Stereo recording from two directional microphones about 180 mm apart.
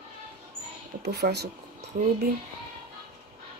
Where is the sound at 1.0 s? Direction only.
65° right (ahead or behind).